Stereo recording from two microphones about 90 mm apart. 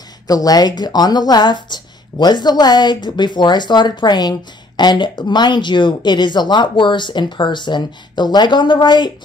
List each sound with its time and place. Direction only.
0.3 s speech: 45° left (ahead or behind)